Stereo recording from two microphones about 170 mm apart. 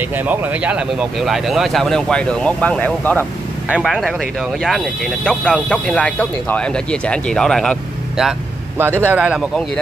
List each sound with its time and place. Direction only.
0.3 s speech: 10° right (ahead or behind)
8.7 s speech: 10° right (ahead or behind)